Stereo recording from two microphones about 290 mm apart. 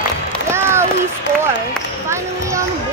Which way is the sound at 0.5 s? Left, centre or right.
Centre.